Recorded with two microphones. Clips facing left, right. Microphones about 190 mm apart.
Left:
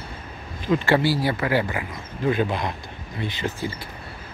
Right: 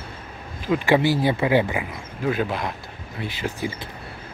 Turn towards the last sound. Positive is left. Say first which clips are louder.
# even
turn(degrees=-15)  # may be behind; listen again after turning